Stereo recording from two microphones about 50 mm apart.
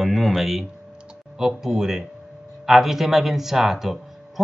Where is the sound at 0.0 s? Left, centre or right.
Centre.